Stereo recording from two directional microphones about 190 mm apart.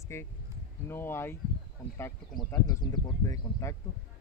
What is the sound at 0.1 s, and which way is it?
Speech, 15° left (ahead or behind).